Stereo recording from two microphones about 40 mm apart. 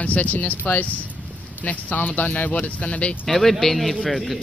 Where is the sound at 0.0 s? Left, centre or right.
Left.